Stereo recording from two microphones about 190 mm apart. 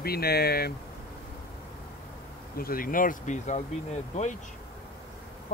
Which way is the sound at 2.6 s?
50° left (ahead or behind).